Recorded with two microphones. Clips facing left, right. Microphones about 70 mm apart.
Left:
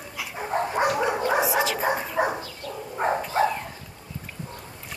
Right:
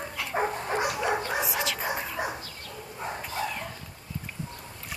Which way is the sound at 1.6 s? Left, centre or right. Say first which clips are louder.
Left 6 dB; centre.